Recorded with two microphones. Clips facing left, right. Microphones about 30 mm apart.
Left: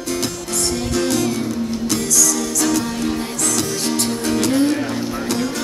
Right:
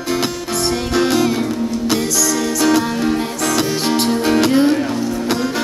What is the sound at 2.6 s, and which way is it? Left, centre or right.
Music, right.